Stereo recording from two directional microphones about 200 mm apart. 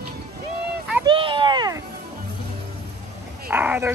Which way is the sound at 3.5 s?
10° right (ahead or behind).